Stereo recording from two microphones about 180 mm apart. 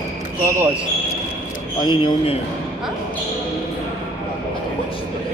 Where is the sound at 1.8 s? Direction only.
25° left (ahead or behind).